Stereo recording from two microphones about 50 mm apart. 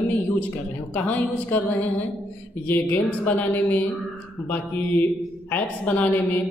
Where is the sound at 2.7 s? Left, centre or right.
Left.